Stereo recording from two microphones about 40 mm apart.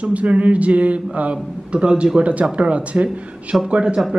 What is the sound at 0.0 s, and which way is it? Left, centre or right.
A man's voice, right.